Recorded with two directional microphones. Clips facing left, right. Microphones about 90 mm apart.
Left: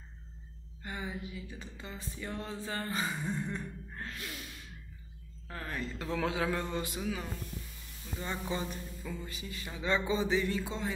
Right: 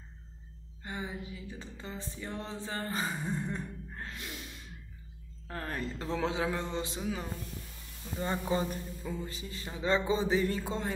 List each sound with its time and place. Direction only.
0.8 s music: 25° right (ahead or behind)
5.5 s speech: 40° right (ahead or behind)
6.0 s a man's voice: 25° right (ahead or behind); by 10.9 s 40° right (ahead or behind)